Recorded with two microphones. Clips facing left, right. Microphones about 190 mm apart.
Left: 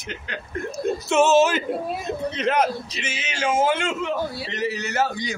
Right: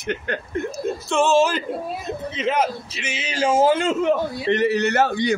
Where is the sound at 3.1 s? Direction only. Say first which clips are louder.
Right 4 dB; 30° right (ahead or behind).